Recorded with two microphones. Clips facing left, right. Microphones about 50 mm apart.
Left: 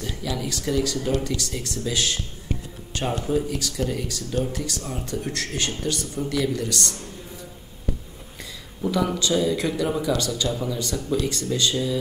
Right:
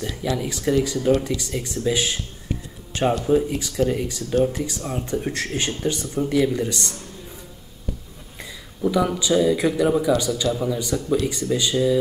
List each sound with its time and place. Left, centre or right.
0.4 s speech: centre
2.9 s music: right
3.3 s speech: centre
8.8 s speech: centre